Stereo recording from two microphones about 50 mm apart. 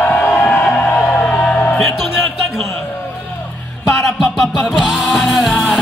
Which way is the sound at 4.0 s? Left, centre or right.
Centre.